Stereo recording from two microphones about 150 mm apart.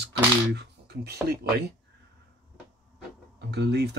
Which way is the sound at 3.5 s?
90° right.